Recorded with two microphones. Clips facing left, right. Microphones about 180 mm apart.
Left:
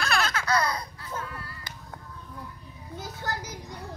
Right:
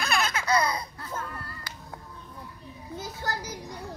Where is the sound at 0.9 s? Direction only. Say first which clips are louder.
Even; 55° right (ahead or behind).